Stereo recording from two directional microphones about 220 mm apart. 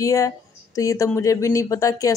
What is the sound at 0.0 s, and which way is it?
Speech, 15° left (ahead or behind).